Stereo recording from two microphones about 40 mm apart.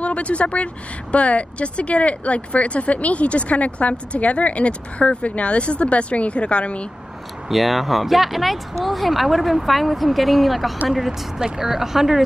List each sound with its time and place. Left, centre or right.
0.0 s speech: left
7.4 s speech: centre
11.1 s speech: centre